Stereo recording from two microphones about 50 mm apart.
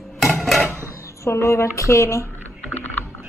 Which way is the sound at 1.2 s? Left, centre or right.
Left.